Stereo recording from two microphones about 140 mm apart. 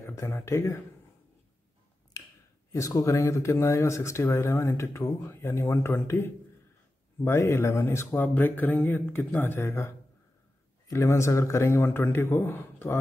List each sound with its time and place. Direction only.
0.0 s speech: 20° left (ahead or behind)
2.7 s speech: 20° left (ahead or behind)